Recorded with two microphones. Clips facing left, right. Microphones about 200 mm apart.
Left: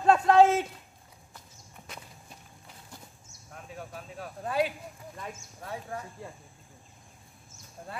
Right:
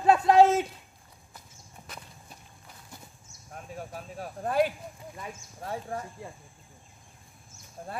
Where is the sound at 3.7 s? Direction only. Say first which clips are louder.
Right 2 dB; 40° right (ahead or behind).